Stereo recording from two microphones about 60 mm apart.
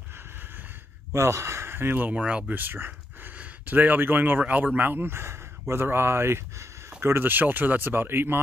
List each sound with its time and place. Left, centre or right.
1.1 s speech: right
2.5 s a sound: right
3.3 s speech: right